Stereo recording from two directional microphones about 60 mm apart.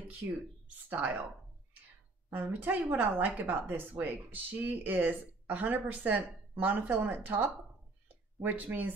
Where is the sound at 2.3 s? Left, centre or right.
Right.